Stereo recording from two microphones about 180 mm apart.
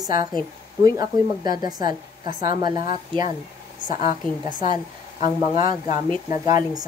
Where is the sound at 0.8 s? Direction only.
20° right (ahead or behind).